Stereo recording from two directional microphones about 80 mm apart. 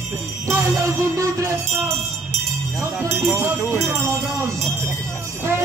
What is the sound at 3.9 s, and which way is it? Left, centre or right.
Speech, right.